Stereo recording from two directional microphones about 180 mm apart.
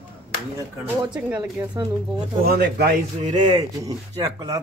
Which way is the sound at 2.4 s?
65° right (ahead or behind).